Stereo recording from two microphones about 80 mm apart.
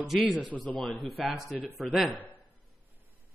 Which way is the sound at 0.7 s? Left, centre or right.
Centre.